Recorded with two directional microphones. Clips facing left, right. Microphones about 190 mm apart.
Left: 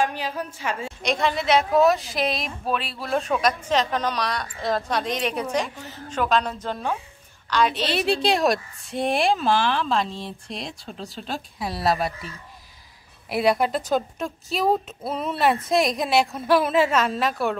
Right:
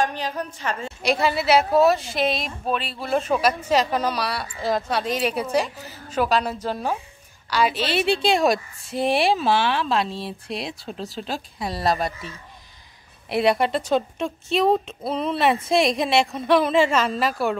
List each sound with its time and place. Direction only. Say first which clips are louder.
0.0 s a woman's voice: right 1 dB; 5° left (ahead or behind)
1.0 s a woman's voice: right 2 dB; 5° right (ahead or behind)